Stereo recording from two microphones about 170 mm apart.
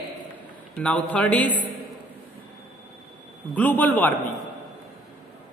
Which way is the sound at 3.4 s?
10° left (ahead or behind).